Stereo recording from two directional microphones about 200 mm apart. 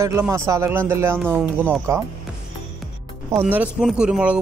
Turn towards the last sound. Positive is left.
turn(degrees=-5)  # may be behind; listen again after turning